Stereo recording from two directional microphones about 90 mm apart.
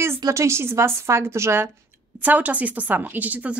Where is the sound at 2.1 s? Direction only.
20° right (ahead or behind).